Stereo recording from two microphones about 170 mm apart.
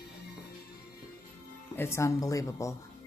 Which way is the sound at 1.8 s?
15° left (ahead or behind).